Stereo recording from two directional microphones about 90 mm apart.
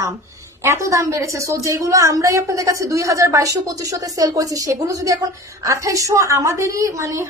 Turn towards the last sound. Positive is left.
turn(degrees=-35)  # may be behind; listen again after turning